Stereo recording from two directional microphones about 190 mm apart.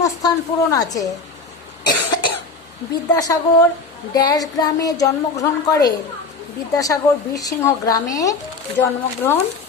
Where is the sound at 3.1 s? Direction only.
20° left (ahead or behind).